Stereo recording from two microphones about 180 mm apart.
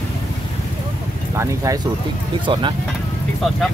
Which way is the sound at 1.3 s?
15° right (ahead or behind).